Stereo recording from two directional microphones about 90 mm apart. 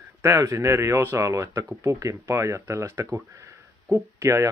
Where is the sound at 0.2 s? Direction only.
35° right (ahead or behind).